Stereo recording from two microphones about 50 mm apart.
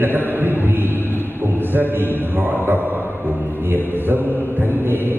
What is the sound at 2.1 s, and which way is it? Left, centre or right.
Mantra, right.